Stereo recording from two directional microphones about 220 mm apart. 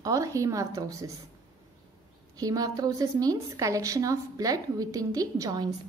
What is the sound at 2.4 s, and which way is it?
A woman's voice, 15° right (ahead or behind).